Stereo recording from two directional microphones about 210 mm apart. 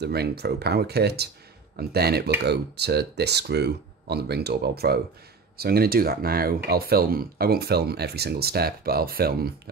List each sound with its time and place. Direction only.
0.0 s speech: 50° right (ahead or behind)